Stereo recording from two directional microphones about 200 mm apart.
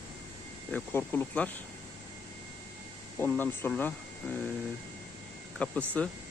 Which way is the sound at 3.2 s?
10° left (ahead or behind).